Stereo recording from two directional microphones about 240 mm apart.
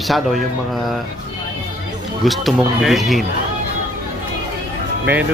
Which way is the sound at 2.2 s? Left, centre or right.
Centre.